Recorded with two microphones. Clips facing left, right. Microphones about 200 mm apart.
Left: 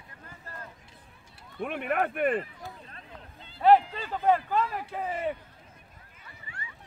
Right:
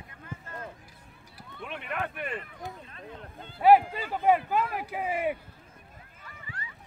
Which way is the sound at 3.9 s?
10° right (ahead or behind).